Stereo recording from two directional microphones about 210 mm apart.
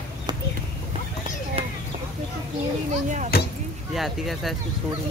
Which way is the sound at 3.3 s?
45° left (ahead or behind).